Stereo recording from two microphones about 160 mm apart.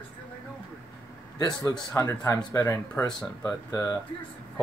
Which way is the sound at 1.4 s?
25° left (ahead or behind).